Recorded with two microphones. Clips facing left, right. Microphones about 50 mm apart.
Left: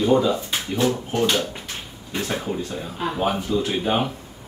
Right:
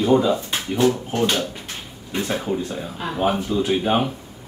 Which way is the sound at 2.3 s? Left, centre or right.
Centre.